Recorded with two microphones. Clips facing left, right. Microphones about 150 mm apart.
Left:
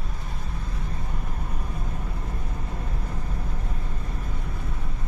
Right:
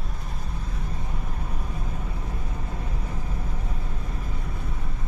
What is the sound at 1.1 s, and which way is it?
Vehicle, centre (ahead or behind).